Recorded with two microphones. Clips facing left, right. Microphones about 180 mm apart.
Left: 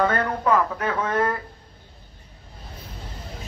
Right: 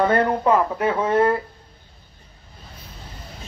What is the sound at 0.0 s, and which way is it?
Speech, 30° right (ahead or behind).